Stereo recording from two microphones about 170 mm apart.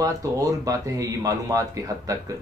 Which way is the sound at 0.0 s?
20° right (ahead or behind).